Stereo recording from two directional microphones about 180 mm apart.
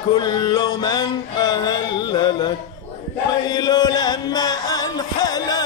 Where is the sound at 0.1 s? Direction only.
25° left (ahead or behind).